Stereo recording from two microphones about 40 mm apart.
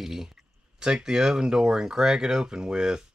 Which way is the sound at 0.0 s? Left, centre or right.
Centre.